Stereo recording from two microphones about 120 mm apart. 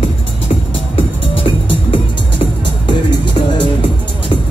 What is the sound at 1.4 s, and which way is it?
Music, 45° left (ahead or behind).